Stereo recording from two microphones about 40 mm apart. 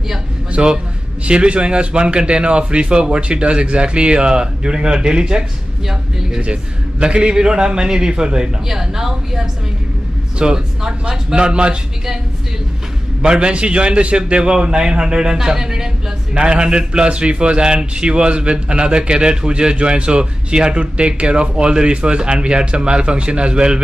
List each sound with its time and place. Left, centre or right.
0.6 s a man's voice: right
6.4 s a man's voice: right
11.3 s a man's voice: right
13.2 s a man's voice: right